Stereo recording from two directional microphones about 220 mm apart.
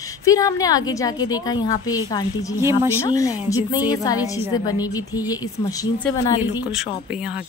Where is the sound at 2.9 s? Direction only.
15° left (ahead or behind).